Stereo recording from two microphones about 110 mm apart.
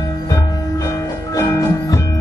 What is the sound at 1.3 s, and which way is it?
Music, 30° left (ahead or behind).